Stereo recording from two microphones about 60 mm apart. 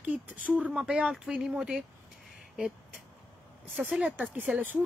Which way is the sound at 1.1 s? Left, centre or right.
Centre.